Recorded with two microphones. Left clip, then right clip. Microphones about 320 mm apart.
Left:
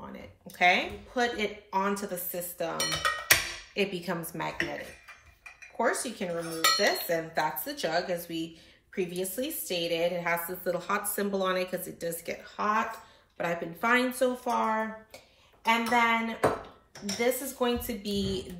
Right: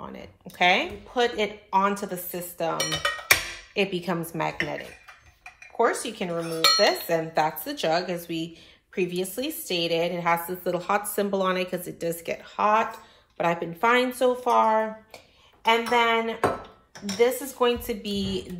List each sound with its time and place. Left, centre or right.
0.6 s speech: centre
2.9 s cowbell: centre
3.7 s speech: centre
5.8 s speech: centre